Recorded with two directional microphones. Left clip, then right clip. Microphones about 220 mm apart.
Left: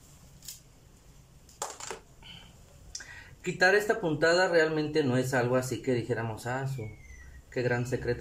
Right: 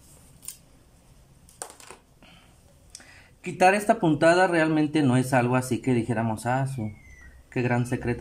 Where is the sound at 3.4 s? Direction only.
45° right (ahead or behind).